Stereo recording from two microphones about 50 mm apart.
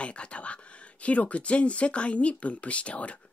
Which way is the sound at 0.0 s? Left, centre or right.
Left.